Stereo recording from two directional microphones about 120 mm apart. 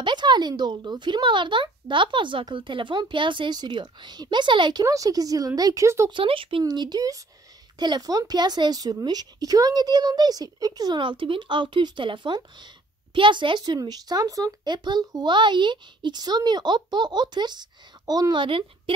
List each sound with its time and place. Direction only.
0.0 s speech: 40° right (ahead or behind)
4.8 s a woman's voice: 30° right (ahead or behind)
6.0 s speech: 45° right (ahead or behind)
6.6 s speech: 35° right (ahead or behind)